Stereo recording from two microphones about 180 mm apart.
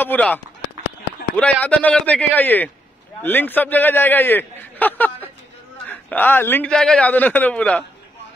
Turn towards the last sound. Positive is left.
turn(degrees=5)  # may be behind; listen again after turning